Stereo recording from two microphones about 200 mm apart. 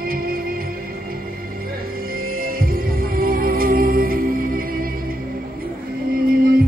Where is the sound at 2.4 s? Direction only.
45° right (ahead or behind).